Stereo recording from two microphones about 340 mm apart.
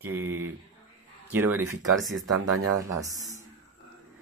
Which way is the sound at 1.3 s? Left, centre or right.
Centre.